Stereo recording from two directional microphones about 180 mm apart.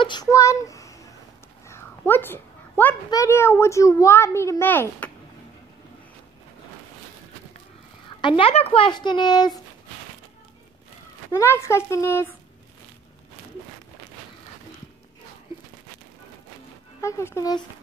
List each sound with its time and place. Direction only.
0.0 s a child's voice: 25° left (ahead or behind)
1.7 s a sound: 10° left (ahead or behind)
3.1 s a child's voice: 15° left (ahead or behind)
8.2 s speech: 30° left (ahead or behind)
11.3 s a child's voice: 15° left (ahead or behind)
17.0 s a child's voice: 15° left (ahead or behind)